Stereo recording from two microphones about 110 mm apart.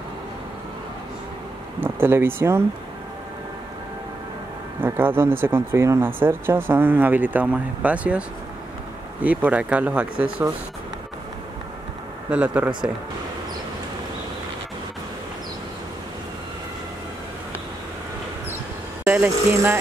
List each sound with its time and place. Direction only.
1.8 s speech: 20° right (ahead or behind)
4.8 s speech: 20° right (ahead or behind)
12.3 s speech: 10° right (ahead or behind)
19.0 s speech: 15° right (ahead or behind)